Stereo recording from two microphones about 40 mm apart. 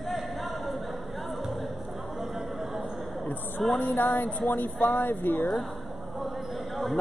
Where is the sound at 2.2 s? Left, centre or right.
Centre.